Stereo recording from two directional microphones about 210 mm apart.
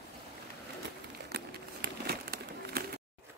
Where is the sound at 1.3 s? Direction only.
50° right (ahead or behind).